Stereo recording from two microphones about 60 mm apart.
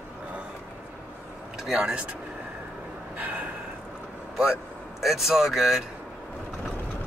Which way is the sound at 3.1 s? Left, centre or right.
Right.